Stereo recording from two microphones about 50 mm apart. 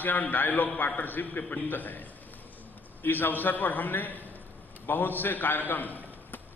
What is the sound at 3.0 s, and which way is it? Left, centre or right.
A man's voice, left.